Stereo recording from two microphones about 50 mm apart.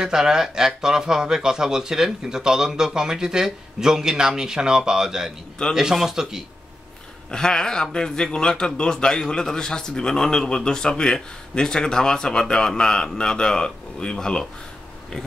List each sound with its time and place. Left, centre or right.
0.0 s speech: centre
5.6 s speech: centre
5.9 s speech: centre
7.2 s a man's voice: centre